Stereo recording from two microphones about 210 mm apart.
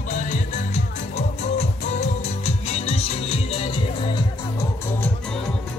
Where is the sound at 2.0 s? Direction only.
30° left (ahead or behind).